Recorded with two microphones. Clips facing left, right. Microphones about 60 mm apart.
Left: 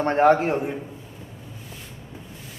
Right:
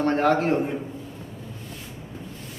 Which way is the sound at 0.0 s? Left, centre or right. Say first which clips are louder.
Left 3 dB; left.